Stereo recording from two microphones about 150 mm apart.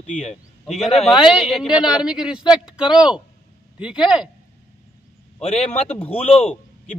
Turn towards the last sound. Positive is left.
turn(degrees=40)  # may be behind; listen again after turning